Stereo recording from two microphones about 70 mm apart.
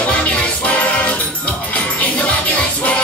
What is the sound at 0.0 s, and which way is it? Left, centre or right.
Music, centre.